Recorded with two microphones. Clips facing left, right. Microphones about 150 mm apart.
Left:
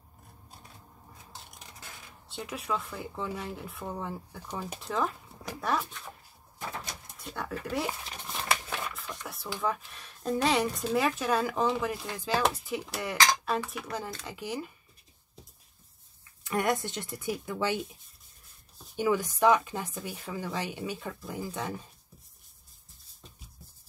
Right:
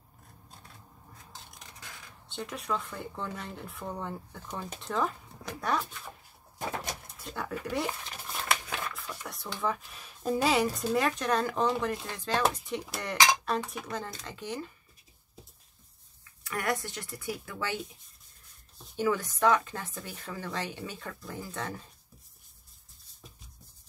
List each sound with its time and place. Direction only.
2.2 s speech: centre (ahead or behind)
7.2 s speech: centre (ahead or behind)
16.4 s speech: 20° left (ahead or behind)
18.9 s speech: 15° left (ahead or behind)